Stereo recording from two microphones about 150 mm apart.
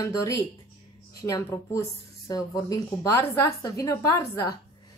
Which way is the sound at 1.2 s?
20° left (ahead or behind).